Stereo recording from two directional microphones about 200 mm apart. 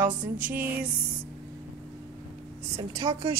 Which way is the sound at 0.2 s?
40° right (ahead or behind).